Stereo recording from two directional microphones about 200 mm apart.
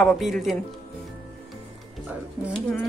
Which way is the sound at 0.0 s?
Centre (ahead or behind).